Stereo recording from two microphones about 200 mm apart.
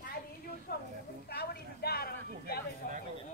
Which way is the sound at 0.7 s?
50° left (ahead or behind).